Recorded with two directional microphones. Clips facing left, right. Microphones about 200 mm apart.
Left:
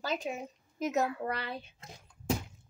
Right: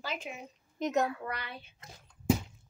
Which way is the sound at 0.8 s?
5° left (ahead or behind).